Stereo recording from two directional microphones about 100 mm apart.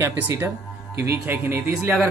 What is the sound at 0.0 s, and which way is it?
Speech, 25° right (ahead or behind).